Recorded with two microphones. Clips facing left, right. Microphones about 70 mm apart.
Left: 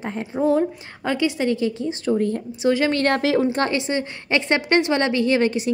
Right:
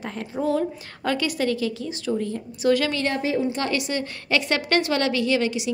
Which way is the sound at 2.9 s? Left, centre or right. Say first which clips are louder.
Left 6 dB; left.